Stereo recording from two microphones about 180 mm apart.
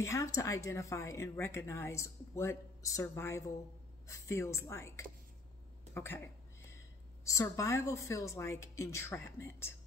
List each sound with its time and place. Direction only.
0.0 s speech: 15° left (ahead or behind)
7.2 s speech: 15° left (ahead or behind)